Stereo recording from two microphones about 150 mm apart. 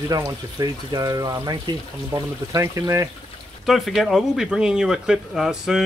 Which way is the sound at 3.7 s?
Centre (ahead or behind).